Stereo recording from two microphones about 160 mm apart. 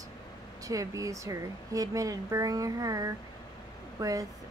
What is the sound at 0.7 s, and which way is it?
A woman's voice, 20° right (ahead or behind).